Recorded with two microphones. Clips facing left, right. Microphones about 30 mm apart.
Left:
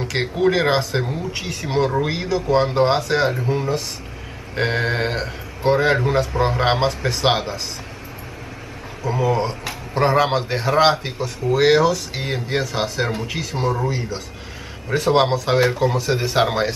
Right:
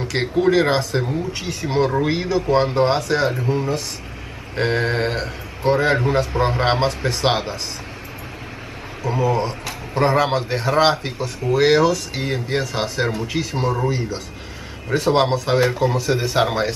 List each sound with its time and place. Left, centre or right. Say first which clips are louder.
0.0 s speech: right 1 dB; centre
9.2 s speech: even; centre